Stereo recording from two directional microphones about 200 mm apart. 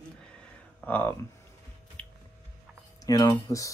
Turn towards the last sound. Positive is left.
turn(degrees=15)  # may be behind; listen again after turning